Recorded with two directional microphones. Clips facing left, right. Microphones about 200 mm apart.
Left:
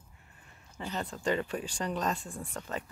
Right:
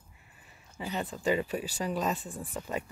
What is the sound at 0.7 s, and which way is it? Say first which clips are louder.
Speech: right 2 dB; 10° right (ahead or behind).